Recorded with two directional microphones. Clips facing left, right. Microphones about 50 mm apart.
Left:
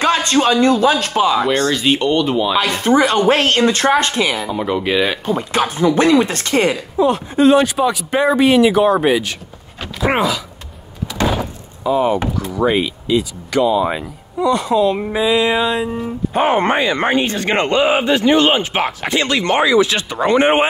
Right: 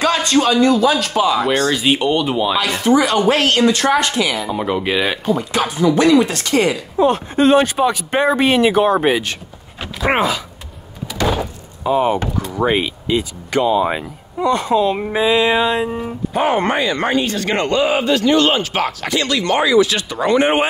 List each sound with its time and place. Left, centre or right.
0.0 s speech: left
1.7 s speech: centre
2.5 s speech: left
4.5 s speech: centre
5.2 s speech: left
7.0 s speech: right
11.8 s speech: right
16.3 s speech: left